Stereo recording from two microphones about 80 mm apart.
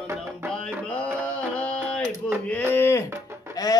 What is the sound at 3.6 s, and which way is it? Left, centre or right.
Music, left.